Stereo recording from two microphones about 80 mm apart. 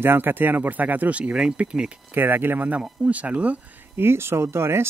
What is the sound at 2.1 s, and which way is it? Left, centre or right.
Speech, right.